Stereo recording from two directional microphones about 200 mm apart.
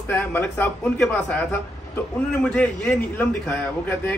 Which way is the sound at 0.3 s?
10° left (ahead or behind).